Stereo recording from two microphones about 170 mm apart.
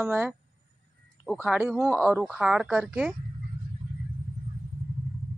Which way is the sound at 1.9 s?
5° left (ahead or behind).